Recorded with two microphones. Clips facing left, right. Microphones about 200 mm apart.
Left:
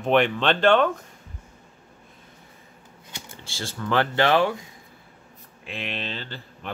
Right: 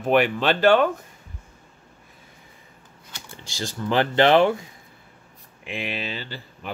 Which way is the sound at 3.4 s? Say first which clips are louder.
Right 3 dB; 15° right (ahead or behind).